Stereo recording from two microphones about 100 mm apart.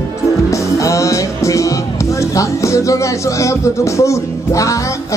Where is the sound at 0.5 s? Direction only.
30° left (ahead or behind).